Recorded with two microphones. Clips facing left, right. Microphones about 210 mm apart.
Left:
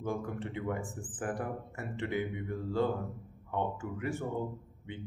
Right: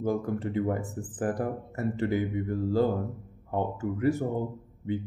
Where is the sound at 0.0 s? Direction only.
40° right (ahead or behind).